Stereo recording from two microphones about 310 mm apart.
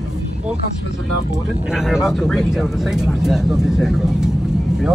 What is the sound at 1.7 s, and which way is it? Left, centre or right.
Speech, centre.